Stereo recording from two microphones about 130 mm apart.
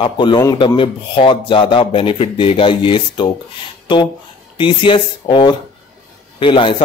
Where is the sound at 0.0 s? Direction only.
40° left (ahead or behind).